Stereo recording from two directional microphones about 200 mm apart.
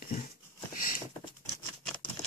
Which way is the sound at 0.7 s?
45° left (ahead or behind).